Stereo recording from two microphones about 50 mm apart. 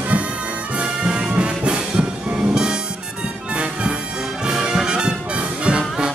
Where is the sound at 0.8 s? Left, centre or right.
Centre.